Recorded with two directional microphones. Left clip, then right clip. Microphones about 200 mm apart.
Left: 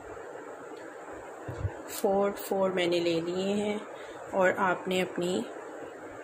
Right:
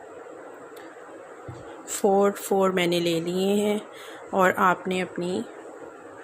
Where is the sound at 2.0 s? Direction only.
35° right (ahead or behind); by 5.4 s 15° right (ahead or behind).